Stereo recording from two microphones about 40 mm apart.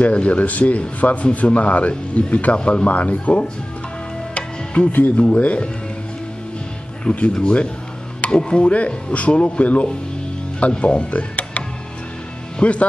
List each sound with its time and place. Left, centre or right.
0.0 s a man's voice: left
4.3 s music: left
4.9 s a man's voice: left
7.1 s speech: centre
8.3 s a man's voice: left
12.5 s speech: left